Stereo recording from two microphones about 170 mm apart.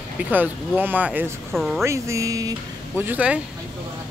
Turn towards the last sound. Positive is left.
turn(degrees=-10)  # may be behind; listen again after turning